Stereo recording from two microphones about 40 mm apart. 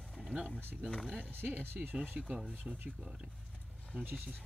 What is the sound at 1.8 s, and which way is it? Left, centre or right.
Speech, right.